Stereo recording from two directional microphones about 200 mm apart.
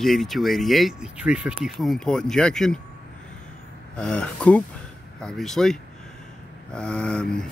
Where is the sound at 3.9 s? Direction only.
5° left (ahead or behind).